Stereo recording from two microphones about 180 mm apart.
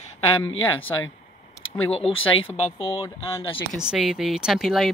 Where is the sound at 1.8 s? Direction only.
30° left (ahead or behind).